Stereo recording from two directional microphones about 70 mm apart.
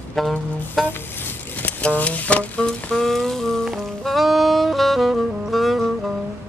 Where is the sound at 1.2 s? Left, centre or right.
Left.